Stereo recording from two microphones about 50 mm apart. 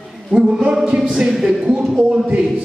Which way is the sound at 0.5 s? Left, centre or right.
Centre.